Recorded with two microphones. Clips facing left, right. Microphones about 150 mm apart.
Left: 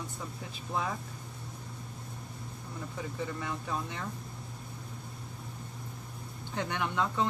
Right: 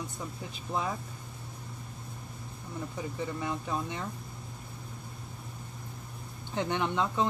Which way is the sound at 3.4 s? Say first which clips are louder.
Right 3 dB; 20° right (ahead or behind).